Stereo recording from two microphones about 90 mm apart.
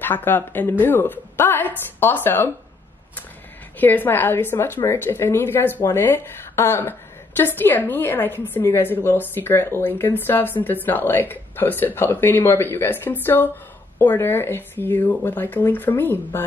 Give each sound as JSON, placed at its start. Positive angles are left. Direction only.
{"t": 0.0, "sound": "speech", "side_deg": 20}
{"t": 3.8, "sound": "speech", "side_deg": 20}